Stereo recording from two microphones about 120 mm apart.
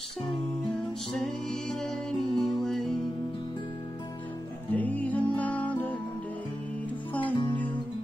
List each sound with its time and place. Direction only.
1.1 s music: 5° left (ahead or behind)
4.7 s music: 15° left (ahead or behind)
7.3 s music: 40° left (ahead or behind)